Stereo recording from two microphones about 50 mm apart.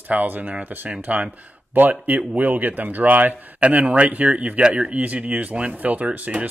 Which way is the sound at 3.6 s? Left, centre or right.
Right.